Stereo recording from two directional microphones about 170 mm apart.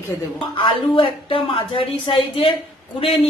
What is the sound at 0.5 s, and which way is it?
A woman's voice, 30° left (ahead or behind).